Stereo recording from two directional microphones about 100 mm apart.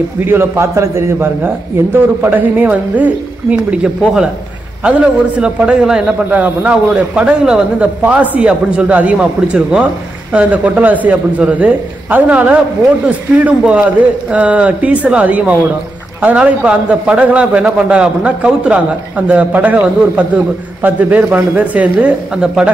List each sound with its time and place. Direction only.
0.2 s a man's voice: 25° right (ahead or behind); by 22.7 s 5° right (ahead or behind)